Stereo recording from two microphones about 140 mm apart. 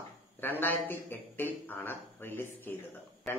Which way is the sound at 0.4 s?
15° left (ahead or behind).